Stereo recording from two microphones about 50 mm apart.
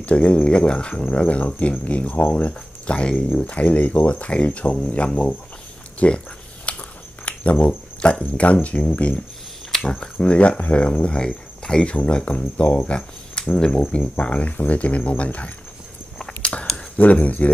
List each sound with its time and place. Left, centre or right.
0.0 s speech: left
5.9 s a sound: left
7.6 s speech: left
12.5 s speech: left
13.9 s speech: left
16.2 s a sound: centre
16.7 s speech: left